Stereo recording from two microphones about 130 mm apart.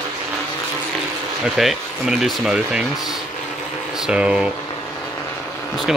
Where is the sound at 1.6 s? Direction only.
Centre (ahead or behind).